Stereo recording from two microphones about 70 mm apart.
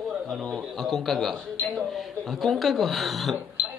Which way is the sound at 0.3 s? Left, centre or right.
Centre.